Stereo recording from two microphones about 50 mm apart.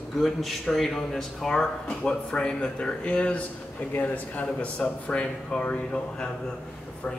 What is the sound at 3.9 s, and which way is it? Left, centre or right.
Speech, left.